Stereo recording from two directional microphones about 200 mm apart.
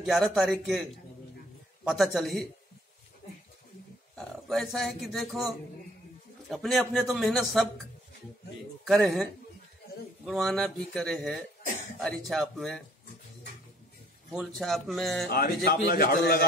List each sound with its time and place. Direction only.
0.0 s a man's voice: centre (ahead or behind)
1.9 s a man's voice: centre (ahead or behind)
4.5 s a man's voice: centre (ahead or behind)
6.5 s a man's voice: centre (ahead or behind)
8.8 s a man's voice: centre (ahead or behind)
14.3 s a man's voice: centre (ahead or behind)
15.2 s a man's voice: 50° left (ahead or behind)